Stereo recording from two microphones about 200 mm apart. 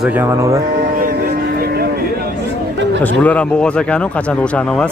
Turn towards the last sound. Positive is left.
turn(degrees=5)  # may be behind; listen again after turning